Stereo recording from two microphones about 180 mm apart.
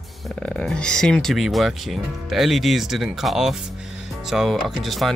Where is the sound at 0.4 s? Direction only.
5° left (ahead or behind).